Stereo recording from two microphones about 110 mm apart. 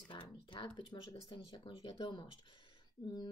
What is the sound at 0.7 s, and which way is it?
Speech, 45° left (ahead or behind).